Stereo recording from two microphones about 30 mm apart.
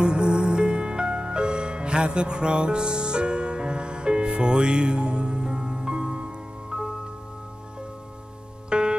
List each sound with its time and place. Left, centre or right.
0.0 s music: right
8.6 s music: right